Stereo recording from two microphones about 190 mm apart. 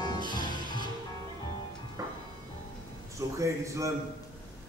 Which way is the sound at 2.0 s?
20° right (ahead or behind).